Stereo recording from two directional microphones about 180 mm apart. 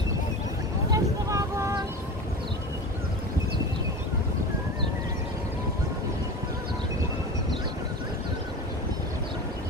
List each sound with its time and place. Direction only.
0.9 s vehicle: 15° right (ahead or behind)